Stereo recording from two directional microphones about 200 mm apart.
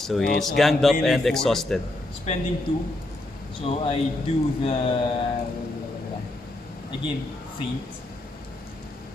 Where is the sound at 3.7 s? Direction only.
25° left (ahead or behind).